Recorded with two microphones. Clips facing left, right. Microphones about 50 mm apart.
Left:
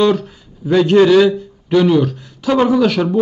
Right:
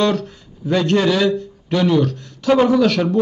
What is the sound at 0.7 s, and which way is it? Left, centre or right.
A man's voice, centre.